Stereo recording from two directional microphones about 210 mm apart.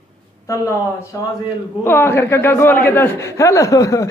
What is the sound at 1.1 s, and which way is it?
A man's voice, 15° left (ahead or behind).